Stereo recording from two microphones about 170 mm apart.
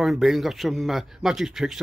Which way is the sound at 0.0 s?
Centre (ahead or behind).